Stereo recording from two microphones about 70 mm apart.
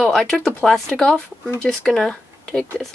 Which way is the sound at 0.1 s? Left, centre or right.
Centre.